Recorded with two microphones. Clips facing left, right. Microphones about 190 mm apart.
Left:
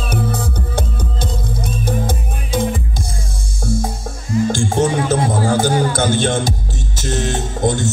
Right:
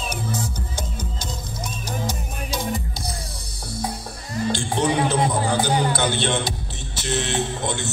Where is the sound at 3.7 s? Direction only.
45° left (ahead or behind).